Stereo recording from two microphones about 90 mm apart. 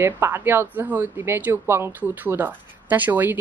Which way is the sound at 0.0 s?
25° right (ahead or behind).